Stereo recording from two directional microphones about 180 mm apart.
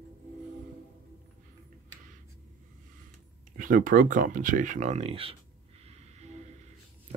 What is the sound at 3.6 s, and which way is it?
Speech, 50° right (ahead or behind).